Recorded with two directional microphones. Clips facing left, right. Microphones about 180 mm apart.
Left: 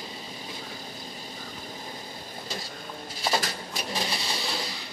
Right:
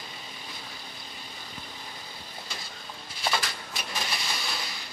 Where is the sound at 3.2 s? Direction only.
40° left (ahead or behind).